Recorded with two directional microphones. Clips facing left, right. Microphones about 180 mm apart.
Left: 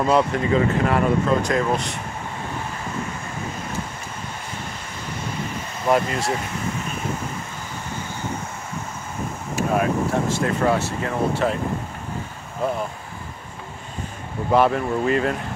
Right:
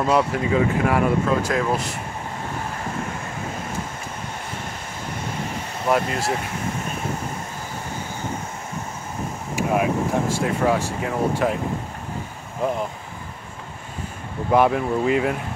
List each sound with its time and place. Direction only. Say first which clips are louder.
0.0 s speech: left 1 dB; 5° right (ahead or behind)
5.9 s speech: left 1 dB; centre (ahead or behind)
9.6 s speech: even; 10° right (ahead or behind)
14.5 s speech: even; 15° right (ahead or behind)